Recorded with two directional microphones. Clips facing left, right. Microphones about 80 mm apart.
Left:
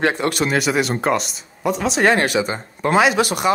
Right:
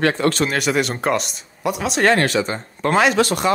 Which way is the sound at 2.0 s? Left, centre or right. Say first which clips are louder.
Right 1 dB; centre.